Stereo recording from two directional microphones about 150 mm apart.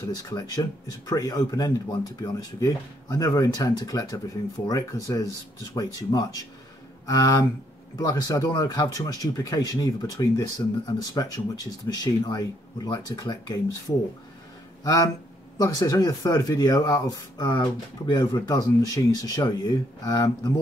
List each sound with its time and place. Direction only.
0.3 s speech: 25° left (ahead or behind)